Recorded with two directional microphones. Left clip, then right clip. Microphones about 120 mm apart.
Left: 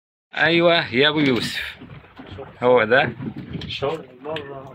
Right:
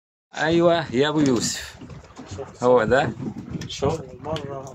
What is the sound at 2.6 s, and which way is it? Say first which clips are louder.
Speech: left 2 dB; 15° right (ahead or behind).